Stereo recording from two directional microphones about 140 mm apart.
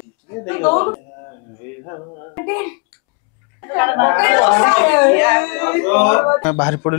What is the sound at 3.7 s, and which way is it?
Speech, 20° left (ahead or behind).